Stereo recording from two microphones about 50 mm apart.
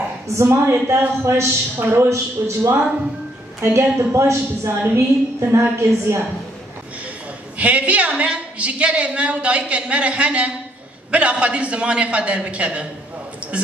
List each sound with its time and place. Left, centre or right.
0.4 s a woman's voice: right
0.8 s a woman's voice: right
2.0 s a man's voice: right
4.6 s a woman's voice: right
7.5 s a woman's voice: right